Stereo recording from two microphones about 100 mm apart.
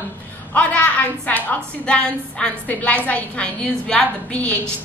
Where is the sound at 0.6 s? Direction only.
15° left (ahead or behind).